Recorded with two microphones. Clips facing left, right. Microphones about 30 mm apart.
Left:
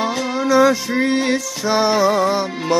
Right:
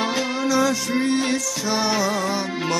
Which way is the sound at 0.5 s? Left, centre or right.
Centre.